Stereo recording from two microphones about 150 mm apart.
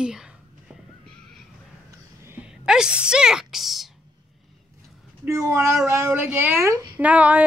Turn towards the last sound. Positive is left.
turn(degrees=-10)  # may be behind; listen again after turning